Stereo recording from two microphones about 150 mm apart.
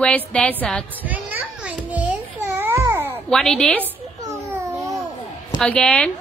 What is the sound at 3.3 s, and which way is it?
Speech, 5° left (ahead or behind).